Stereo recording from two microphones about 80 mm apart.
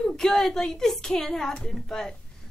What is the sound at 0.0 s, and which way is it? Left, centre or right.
A woman's voice, centre.